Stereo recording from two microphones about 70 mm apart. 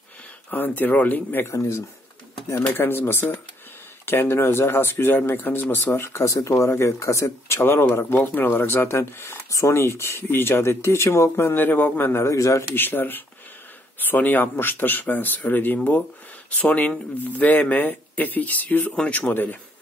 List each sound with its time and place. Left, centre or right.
0.5 s speech: left
1.5 s speech: left
2.6 s speech: left
12.3 s speech: left
12.7 s speech: left